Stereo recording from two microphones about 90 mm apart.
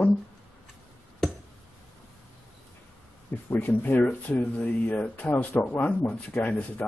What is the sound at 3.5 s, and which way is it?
Speech, 20° left (ahead or behind).